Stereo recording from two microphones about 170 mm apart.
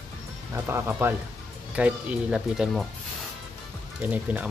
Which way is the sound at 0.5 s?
15° right (ahead or behind).